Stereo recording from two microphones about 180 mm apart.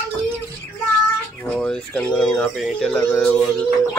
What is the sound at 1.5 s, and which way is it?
Speech, 5° left (ahead or behind).